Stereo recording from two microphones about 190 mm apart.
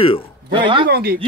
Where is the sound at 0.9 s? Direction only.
55° right (ahead or behind).